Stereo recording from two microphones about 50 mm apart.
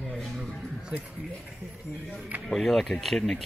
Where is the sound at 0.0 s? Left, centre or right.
Centre.